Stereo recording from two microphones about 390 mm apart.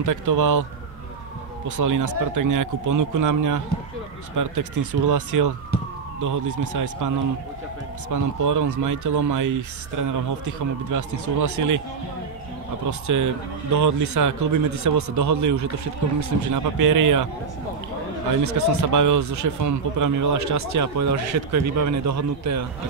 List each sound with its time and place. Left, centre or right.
0.0 s speech: right
1.8 s speech: right
8.1 s speech: right
13.0 s speech: right
18.3 s speech: right